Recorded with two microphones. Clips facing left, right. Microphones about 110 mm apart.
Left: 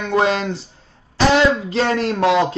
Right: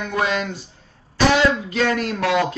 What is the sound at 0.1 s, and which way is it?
Speech, 30° left (ahead or behind).